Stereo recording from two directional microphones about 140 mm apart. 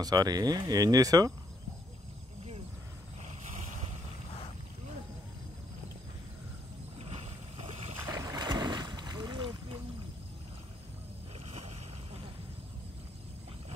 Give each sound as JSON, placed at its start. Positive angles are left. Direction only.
{"t": 0.0, "sound": "speech", "side_deg": -25}
{"t": 7.0, "sound": "boat", "side_deg": -45}
{"t": 8.1, "sound": "boat", "side_deg": -25}